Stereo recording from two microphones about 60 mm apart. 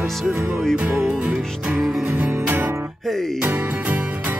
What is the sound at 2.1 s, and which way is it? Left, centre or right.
Music, right.